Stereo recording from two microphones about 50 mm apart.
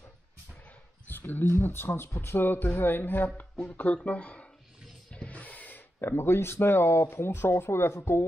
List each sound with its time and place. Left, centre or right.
1.0 s a sound: left
1.4 s speech: left
3.7 s speech: left